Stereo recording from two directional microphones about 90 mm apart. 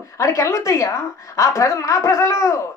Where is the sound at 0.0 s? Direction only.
35° left (ahead or behind).